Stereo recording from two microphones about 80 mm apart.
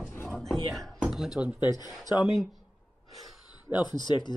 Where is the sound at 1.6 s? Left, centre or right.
Left.